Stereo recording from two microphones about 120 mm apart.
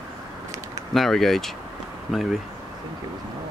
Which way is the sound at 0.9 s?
5° left (ahead or behind).